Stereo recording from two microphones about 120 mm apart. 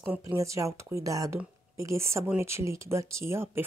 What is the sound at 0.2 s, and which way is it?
Speech, 25° right (ahead or behind).